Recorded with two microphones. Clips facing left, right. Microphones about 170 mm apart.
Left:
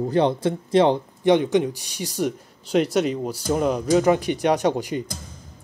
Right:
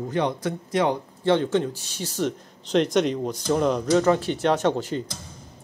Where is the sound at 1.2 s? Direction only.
15° left (ahead or behind).